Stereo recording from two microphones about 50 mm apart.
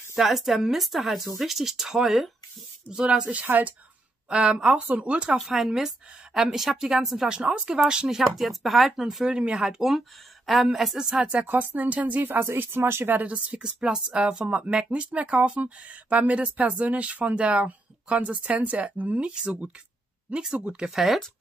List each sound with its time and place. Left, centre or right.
0.1 s speech: centre
2.9 s a woman's voice: centre
3.4 s speech: right
4.3 s speech: right
5.4 s a woman's voice: centre
8.2 s speech: centre
9.2 s a woman's voice: centre
11.1 s speech: right
13.2 s speech: right
20.5 s speech: right
20.9 s speech: centre